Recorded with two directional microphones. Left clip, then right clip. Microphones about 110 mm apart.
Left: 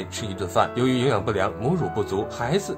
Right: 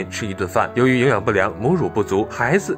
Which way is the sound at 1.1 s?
50° right (ahead or behind).